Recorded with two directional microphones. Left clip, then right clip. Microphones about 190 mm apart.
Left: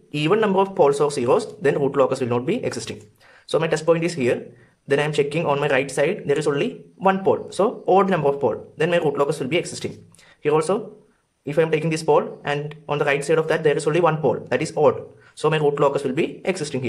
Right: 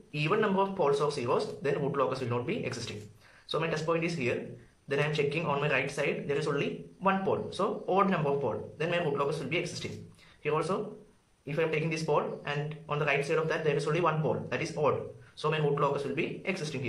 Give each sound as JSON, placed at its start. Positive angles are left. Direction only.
{"t": 0.1, "sound": "speech", "side_deg": 45}